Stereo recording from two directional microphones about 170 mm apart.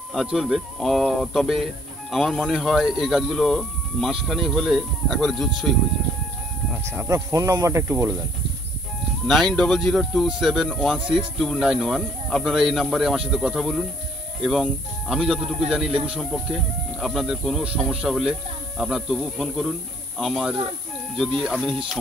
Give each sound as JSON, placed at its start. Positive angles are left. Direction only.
{"t": 0.1, "sound": "speech", "side_deg": 0}
{"t": 6.7, "sound": "speech", "side_deg": -15}
{"t": 9.3, "sound": "speech", "side_deg": 5}